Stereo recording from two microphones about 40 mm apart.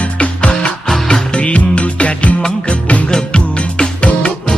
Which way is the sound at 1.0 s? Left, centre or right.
Left.